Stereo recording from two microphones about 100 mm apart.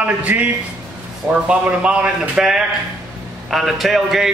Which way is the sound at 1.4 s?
10° right (ahead or behind).